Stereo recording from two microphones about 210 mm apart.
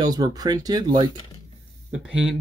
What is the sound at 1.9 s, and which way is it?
Speech, 5° right (ahead or behind).